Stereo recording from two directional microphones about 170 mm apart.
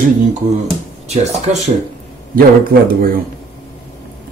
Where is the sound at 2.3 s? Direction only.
60° right (ahead or behind).